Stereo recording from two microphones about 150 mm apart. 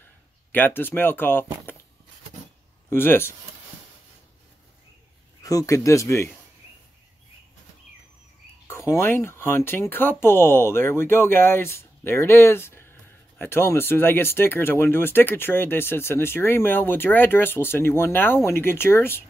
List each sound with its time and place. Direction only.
0.5 s speech: 15° left (ahead or behind)
2.9 s speech: 15° left (ahead or behind)
5.4 s speech: 25° left (ahead or behind)
8.6 s speech: 20° left (ahead or behind)